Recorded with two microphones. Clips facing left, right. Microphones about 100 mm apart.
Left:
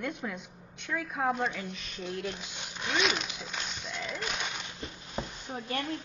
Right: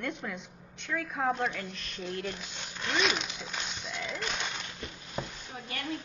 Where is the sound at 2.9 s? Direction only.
Centre (ahead or behind).